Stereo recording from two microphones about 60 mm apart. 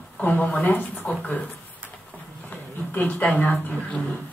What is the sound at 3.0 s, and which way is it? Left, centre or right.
Speech, left.